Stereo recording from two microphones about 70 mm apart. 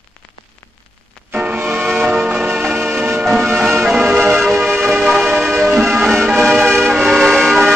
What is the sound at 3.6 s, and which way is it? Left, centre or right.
Music, centre.